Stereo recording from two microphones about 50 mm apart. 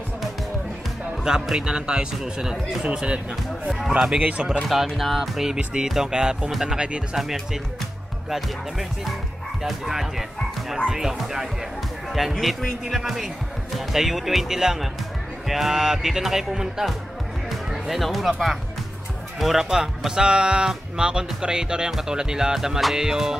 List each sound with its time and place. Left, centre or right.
1.2 s speech: centre
4.2 s speech: right
4.6 s speech: centre
8.3 s speech: centre